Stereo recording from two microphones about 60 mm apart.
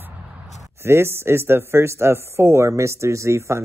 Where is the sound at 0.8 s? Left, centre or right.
Right.